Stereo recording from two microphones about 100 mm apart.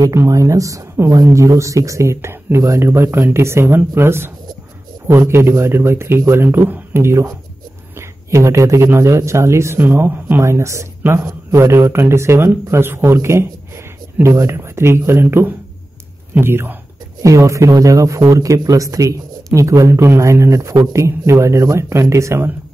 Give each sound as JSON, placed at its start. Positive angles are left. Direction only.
{"t": 0.0, "sound": "a man's voice", "side_deg": -30}